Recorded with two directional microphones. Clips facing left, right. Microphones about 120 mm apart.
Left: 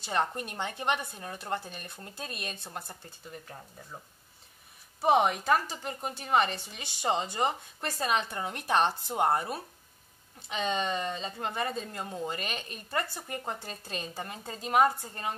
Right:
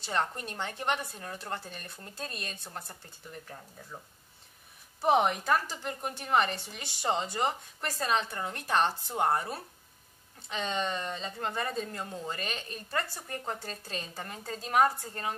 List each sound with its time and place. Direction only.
0.0 s speech: 15° left (ahead or behind)
5.0 s a woman's voice: 5° left (ahead or behind)